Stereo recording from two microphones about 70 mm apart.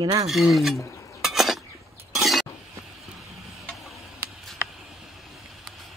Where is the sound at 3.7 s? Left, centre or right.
Centre.